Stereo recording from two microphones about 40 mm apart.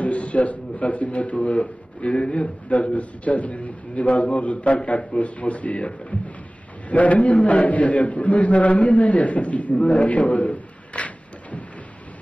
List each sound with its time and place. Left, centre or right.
0.0 s a man's voice: left